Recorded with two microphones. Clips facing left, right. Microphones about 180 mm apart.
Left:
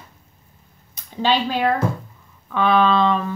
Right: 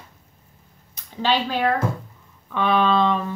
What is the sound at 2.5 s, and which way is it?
Speech, centre (ahead or behind).